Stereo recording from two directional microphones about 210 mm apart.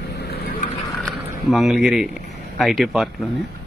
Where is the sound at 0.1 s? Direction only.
50° left (ahead or behind).